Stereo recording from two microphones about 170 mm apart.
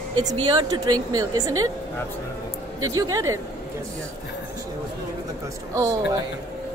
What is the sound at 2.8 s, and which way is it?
Speech, 20° right (ahead or behind).